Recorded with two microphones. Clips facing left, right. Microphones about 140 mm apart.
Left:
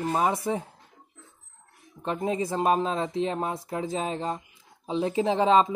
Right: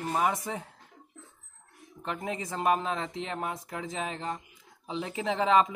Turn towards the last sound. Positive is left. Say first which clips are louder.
# left 4 dB
turn(degrees=30)  # may be behind; listen again after turning